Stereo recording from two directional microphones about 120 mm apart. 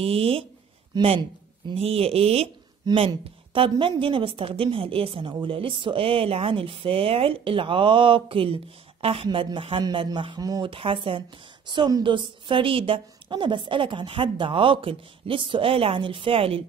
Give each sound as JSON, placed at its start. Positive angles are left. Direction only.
{"t": 0.0, "sound": "a woman's voice", "side_deg": -55}
{"t": 1.8, "sound": "a woman's voice", "side_deg": -55}
{"t": 10.7, "sound": "a woman's voice", "side_deg": -45}